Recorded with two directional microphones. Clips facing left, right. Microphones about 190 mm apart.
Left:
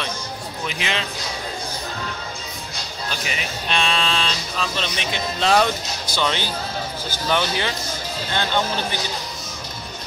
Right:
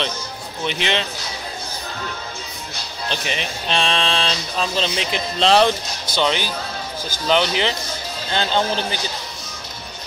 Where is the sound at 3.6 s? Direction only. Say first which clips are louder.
Right 2 dB; 35° right (ahead or behind).